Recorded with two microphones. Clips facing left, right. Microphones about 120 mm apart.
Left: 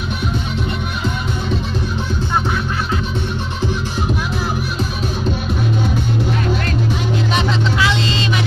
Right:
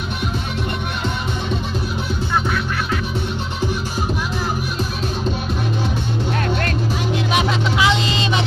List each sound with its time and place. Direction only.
7.3 s music: 20° right (ahead or behind)